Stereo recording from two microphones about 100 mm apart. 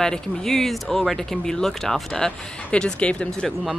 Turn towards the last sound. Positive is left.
turn(degrees=5)  # may be behind; listen again after turning